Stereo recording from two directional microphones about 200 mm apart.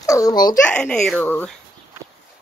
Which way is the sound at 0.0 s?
15° left (ahead or behind).